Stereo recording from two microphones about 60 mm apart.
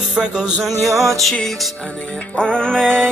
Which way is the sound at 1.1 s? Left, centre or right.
Centre.